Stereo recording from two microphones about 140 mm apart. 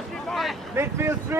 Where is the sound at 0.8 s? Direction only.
20° right (ahead or behind).